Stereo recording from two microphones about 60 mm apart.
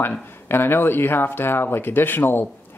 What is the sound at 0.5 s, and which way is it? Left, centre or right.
Speech, left.